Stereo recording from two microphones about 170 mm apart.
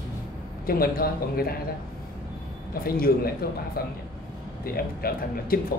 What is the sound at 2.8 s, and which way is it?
Speech, 60° left (ahead or behind).